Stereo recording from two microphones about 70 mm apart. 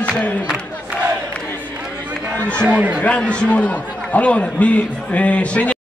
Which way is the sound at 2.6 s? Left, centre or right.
Centre.